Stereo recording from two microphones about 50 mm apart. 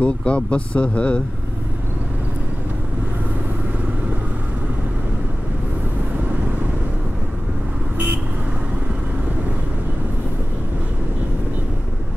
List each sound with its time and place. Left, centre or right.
0.0 s speech: left